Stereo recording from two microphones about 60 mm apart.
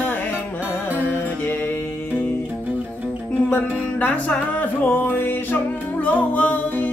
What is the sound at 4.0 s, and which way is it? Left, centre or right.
Music, left.